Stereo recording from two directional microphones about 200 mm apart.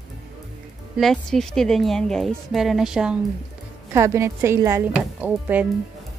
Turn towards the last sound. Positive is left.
turn(degrees=-10)  # may be behind; listen again after turning